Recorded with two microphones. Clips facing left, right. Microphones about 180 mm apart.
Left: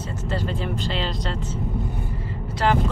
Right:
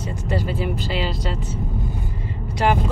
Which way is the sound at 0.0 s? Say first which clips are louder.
Right 2 dB; 15° right (ahead or behind).